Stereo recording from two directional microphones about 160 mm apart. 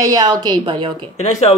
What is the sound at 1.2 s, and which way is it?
Speech, 45° left (ahead or behind).